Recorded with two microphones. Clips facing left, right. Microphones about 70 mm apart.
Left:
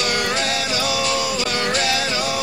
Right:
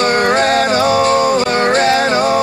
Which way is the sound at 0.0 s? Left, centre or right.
Right.